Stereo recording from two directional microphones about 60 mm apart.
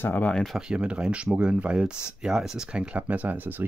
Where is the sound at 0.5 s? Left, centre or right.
Centre.